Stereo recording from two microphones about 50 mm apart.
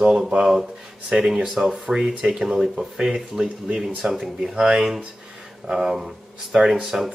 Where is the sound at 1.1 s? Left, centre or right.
Centre.